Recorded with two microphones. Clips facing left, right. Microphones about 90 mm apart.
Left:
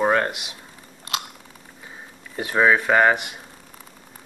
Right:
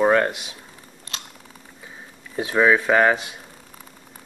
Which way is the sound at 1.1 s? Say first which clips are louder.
Left 8 dB; 60° left (ahead or behind).